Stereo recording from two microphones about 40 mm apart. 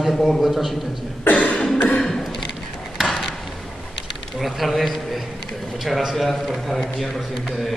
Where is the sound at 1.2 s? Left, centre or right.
Left.